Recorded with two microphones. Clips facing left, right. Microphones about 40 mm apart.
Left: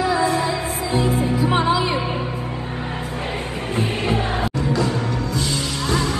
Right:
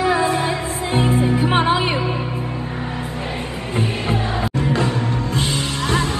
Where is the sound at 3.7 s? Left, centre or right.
Right.